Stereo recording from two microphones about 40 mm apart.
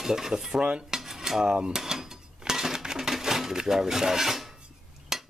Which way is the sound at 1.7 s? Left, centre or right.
Centre.